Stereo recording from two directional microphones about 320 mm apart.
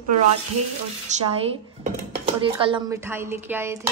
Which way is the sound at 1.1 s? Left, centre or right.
Right.